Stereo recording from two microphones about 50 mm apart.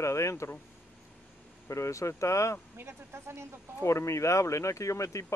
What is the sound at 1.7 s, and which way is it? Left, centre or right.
Speech, left.